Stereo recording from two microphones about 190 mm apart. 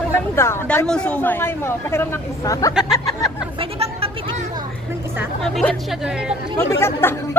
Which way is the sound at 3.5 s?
30° right (ahead or behind).